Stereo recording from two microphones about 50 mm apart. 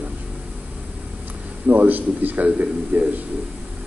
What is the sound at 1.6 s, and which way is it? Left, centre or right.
A man's voice, right.